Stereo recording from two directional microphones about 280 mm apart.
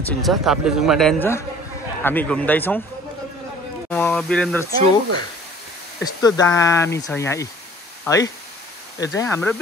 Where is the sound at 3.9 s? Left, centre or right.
Centre.